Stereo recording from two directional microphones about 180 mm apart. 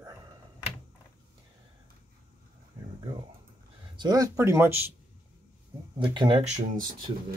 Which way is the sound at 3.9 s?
20° right (ahead or behind).